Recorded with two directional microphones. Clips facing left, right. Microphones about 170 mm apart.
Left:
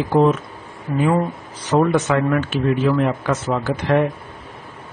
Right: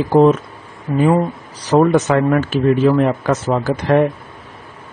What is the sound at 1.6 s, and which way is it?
Speech, 40° right (ahead or behind).